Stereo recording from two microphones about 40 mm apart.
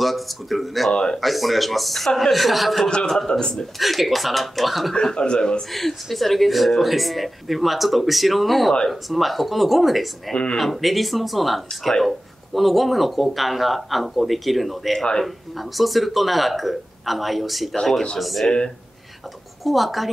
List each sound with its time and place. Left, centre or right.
0.0 s speech: centre
0.9 s speech: centre
1.2 s speech: centre
3.8 s speech: centre
5.1 s speech: left
5.7 s speech: centre
10.3 s speech: left
10.6 s speech: centre
15.8 s speech: centre
19.6 s speech: centre